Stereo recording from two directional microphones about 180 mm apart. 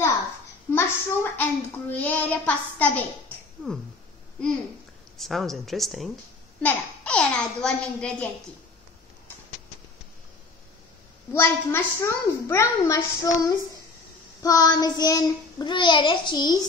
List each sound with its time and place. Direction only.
0.7 s a woman's voice: 10° left (ahead or behind)
5.1 s a woman's voice: centre (ahead or behind)
11.3 s a woman's voice: 15° left (ahead or behind)
14.4 s child singing: 20° left (ahead or behind)